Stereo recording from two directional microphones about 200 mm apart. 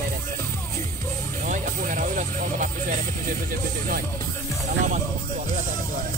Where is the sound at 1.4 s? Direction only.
40° right (ahead or behind).